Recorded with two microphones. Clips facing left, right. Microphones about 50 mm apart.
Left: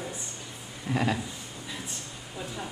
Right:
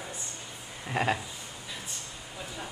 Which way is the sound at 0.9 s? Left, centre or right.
Right.